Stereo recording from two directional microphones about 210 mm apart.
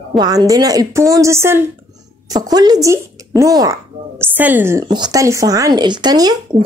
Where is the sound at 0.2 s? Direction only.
20° right (ahead or behind).